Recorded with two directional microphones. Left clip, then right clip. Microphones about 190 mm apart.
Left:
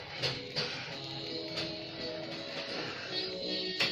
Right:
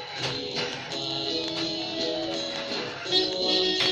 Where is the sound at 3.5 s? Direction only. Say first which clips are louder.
Right 14 dB; 45° right (ahead or behind).